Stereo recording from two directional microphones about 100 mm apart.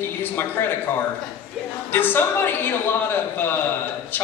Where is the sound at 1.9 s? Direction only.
20° left (ahead or behind).